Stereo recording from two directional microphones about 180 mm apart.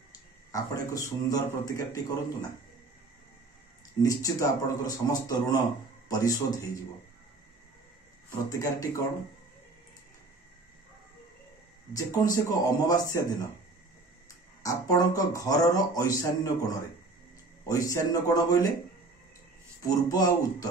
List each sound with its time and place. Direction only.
0.5 s speech: 20° left (ahead or behind)
4.0 s speech: 20° left (ahead or behind)
8.5 s a man's voice: 20° left (ahead or behind)
12.1 s speech: 20° left (ahead or behind)
14.6 s speech: 20° left (ahead or behind)
17.6 s speech: 20° left (ahead or behind)
19.9 s speech: 20° left (ahead or behind)